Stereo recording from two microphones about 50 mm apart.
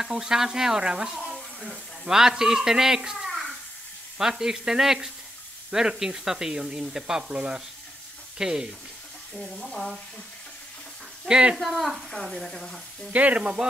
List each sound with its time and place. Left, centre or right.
0.0 s speech: centre
1.1 s a sound: centre
2.0 s a child's voice: centre
9.3 s speech: centre
11.2 s speech: centre
11.5 s stir: centre
13.1 s speech: right
13.4 s speech: centre